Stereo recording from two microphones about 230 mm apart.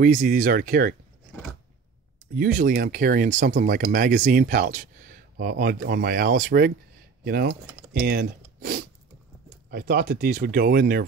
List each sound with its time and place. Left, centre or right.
0.0 s speech: right
2.3 s speech: right
8.1 s a sound: right
9.7 s speech: right